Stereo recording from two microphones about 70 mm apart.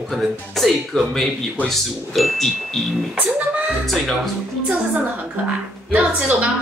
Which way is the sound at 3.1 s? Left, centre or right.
Right.